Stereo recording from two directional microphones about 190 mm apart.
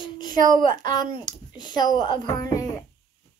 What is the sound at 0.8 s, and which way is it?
A child's voice, 20° left (ahead or behind).